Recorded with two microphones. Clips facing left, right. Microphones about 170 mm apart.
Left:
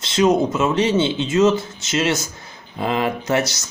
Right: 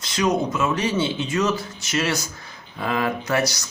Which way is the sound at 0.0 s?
25° left (ahead or behind).